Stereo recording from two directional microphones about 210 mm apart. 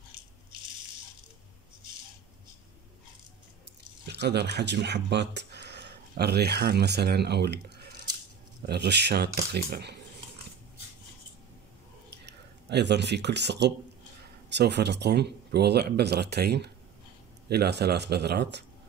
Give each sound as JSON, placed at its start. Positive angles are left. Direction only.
{"t": 4.0, "sound": "speech", "side_deg": -55}
{"t": 12.1, "sound": "speech", "side_deg": -55}